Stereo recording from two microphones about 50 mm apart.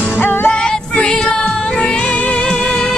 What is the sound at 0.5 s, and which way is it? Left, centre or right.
Music, centre.